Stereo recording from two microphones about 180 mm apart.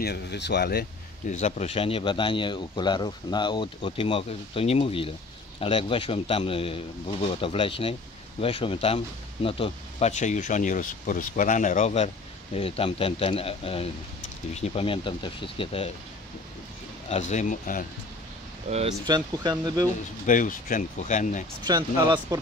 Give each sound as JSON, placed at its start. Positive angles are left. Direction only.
{"t": 0.0, "sound": "speech", "side_deg": 65}
{"t": 1.3, "sound": "speech", "side_deg": 40}
{"t": 17.1, "sound": "speech", "side_deg": 40}
{"t": 18.7, "sound": "speech", "side_deg": -35}
{"t": 19.0, "sound": "speech", "side_deg": -25}
{"t": 20.2, "sound": "speech", "side_deg": 45}
{"t": 21.6, "sound": "speech", "side_deg": -25}